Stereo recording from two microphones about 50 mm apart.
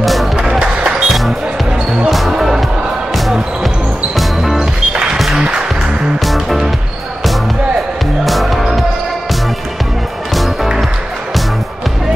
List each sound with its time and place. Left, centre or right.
0.0 s music: centre
0.5 s music: centre
2.0 s music: centre
3.2 s basketball bounce: centre
4.2 s music: centre
4.6 s music: centre
6.2 s music: centre
8.3 s music: centre
10.3 s music: centre